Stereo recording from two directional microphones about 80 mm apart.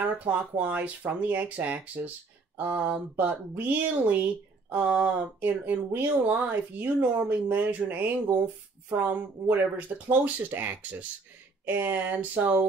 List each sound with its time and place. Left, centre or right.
0.0 s speech: right